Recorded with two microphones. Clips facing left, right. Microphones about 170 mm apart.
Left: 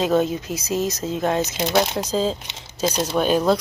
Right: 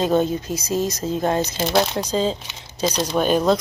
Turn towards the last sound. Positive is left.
turn(degrees=5)  # may be behind; listen again after turning